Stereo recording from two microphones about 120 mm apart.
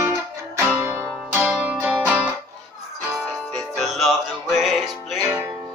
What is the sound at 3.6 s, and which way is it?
Music, centre (ahead or behind).